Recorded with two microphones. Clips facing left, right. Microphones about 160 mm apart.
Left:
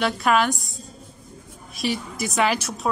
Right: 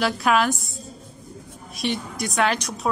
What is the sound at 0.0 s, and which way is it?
Speech, centre (ahead or behind).